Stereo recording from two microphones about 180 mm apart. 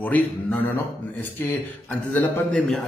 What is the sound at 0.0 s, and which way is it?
A man's voice, 10° left (ahead or behind).